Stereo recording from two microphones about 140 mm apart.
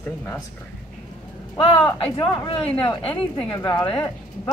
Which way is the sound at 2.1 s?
30° left (ahead or behind).